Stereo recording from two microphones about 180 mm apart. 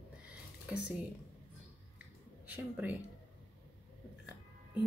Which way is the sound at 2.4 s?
10° right (ahead or behind).